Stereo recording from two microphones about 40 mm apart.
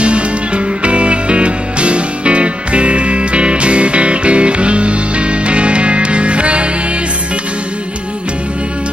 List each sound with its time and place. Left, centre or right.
0.8 s music: right